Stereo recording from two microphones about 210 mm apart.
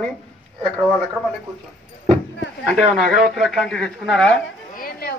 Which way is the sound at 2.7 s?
Centre (ahead or behind).